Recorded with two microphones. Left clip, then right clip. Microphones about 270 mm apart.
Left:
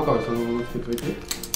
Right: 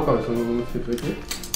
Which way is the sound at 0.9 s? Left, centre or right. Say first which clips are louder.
Right 1 dB; centre.